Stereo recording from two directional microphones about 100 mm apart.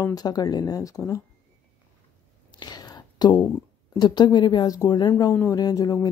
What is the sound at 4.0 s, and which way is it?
A woman's voice, 45° left (ahead or behind).